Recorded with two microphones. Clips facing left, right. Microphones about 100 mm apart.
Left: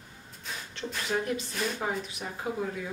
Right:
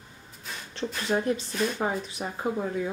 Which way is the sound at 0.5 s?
Centre (ahead or behind).